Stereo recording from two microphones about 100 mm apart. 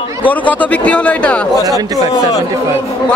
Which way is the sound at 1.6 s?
40° right (ahead or behind).